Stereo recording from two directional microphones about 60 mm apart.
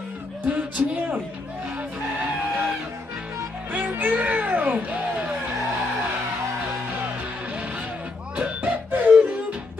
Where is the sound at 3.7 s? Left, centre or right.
Right.